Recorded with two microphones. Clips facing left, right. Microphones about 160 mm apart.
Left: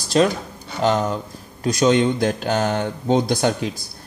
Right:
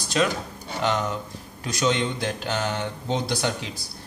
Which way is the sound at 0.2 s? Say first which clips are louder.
Left 6 dB; 40° left (ahead or behind).